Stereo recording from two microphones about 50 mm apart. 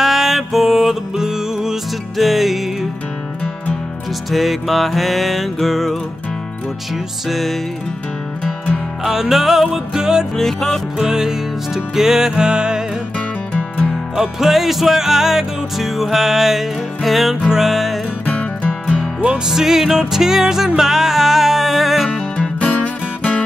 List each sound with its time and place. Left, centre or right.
0.0 s music: centre
4.3 s music: centre
7.2 s music: centre
9.0 s music: centre
10.3 s music: centre
11.0 s music: centre
13.5 s music: left
14.1 s music: centre
18.2 s music: left
18.7 s music: centre
22.4 s music: left